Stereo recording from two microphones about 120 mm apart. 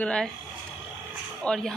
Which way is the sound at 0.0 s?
10° left (ahead or behind).